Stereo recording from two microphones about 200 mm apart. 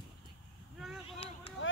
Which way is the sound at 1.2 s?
30° left (ahead or behind).